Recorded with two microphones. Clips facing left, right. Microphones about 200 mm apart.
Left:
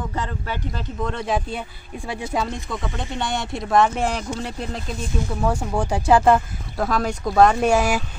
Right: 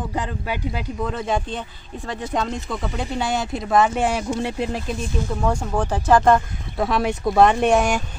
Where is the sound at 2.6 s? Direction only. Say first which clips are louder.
Right 2 dB; 5° right (ahead or behind).